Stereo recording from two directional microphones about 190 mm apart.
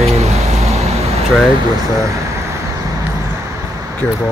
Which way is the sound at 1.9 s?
15° right (ahead or behind).